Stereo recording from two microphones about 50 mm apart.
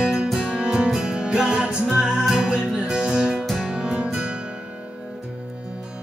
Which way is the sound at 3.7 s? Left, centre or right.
Centre.